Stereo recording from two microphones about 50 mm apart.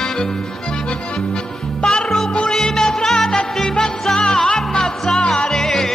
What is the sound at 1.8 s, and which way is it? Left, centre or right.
Music, centre.